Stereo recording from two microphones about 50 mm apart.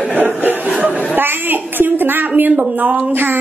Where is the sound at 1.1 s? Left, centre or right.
Right.